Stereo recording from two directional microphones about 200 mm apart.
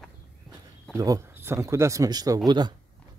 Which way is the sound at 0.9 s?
15° right (ahead or behind).